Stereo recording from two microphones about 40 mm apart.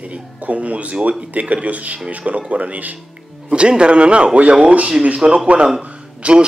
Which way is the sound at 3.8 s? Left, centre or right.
Right.